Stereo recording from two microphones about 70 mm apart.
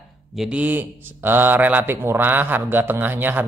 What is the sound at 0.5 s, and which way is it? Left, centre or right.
Speech, right.